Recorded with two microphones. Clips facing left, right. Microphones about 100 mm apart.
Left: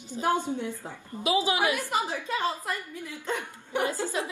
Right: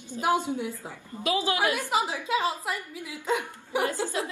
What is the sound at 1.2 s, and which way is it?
Speech, 20° left (ahead or behind).